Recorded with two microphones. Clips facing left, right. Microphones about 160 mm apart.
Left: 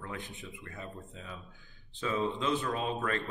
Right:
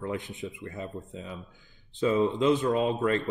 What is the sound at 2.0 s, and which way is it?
Speech, 25° right (ahead or behind).